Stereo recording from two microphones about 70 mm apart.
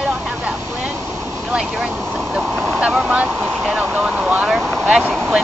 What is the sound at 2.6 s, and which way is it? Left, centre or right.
Vehicle, right.